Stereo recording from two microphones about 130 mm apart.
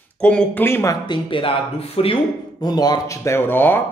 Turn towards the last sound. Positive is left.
turn(degrees=15)  # may be behind; listen again after turning